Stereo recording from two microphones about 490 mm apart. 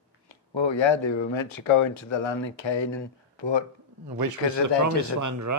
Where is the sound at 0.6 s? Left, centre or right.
Left.